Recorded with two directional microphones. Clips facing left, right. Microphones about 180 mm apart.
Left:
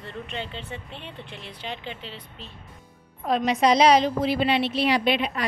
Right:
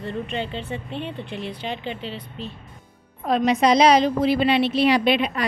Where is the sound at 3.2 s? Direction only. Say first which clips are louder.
Right 2 dB; 60° right (ahead or behind).